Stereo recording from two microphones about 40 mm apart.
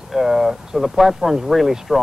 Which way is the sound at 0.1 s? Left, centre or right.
Centre.